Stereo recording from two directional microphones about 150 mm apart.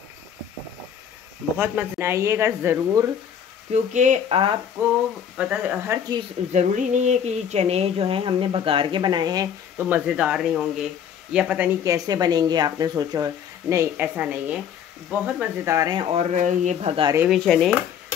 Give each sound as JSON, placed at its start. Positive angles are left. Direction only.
{"t": 1.6, "sound": "speech", "side_deg": -15}
{"t": 3.7, "sound": "speech", "side_deg": -50}
{"t": 4.8, "sound": "speech", "side_deg": -20}
{"t": 6.5, "sound": "speech", "side_deg": -55}
{"t": 9.8, "sound": "speech", "side_deg": -10}
{"t": 11.8, "sound": "speech", "side_deg": -25}
{"t": 16.1, "sound": "speech", "side_deg": -55}
{"t": 17.3, "sound": "speech", "side_deg": 0}